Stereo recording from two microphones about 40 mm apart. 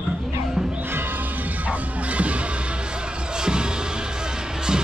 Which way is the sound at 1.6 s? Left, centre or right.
Right.